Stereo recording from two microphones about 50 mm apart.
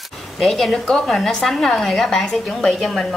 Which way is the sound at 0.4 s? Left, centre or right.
Centre.